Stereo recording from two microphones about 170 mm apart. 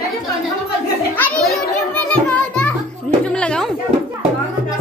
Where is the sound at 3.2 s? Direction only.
5° left (ahead or behind).